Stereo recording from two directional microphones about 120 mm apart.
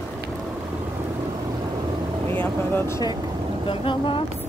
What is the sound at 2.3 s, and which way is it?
Speech, 15° left (ahead or behind).